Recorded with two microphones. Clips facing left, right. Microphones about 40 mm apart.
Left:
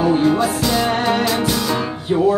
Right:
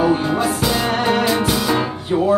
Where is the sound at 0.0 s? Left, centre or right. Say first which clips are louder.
Left 2 dB; centre.